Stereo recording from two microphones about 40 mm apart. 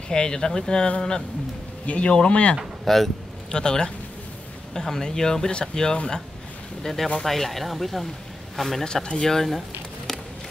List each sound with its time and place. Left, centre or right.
0.1 s speech: centre
2.8 s speech: centre
3.5 s speech: centre
6.8 s speech: centre
8.8 s speech: centre